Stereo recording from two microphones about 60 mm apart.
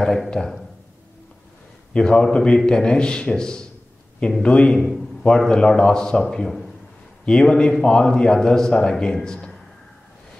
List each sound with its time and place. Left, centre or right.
0.0 s speech: centre
2.0 s a man's voice: centre
4.7 s a man's voice: centre
5.5 s speech: centre
7.2 s speech: centre